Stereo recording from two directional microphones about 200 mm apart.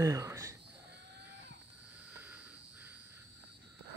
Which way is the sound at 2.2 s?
10° right (ahead or behind).